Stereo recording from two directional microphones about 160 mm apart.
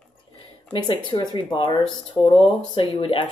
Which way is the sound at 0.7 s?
30° left (ahead or behind).